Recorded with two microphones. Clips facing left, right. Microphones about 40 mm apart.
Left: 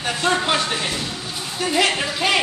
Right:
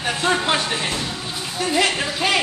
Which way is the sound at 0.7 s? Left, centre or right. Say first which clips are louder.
Even; right.